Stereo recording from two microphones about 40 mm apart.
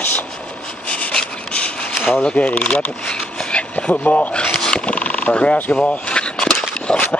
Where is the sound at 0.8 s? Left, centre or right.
Left.